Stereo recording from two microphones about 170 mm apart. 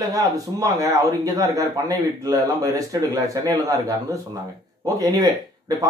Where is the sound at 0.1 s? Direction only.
20° right (ahead or behind).